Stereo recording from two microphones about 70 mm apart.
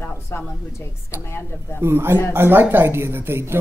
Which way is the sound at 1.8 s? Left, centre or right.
Right.